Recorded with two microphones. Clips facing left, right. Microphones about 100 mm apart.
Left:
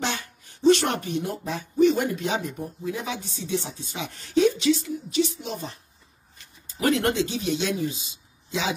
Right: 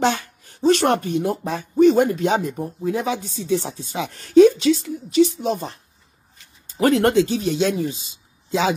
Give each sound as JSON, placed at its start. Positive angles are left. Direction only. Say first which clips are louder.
{"t": 0.0, "sound": "a woman's voice", "louder": "right 9 dB", "side_deg": -40}
{"t": 6.8, "sound": "a woman's voice", "louder": "right 6 dB", "side_deg": -45}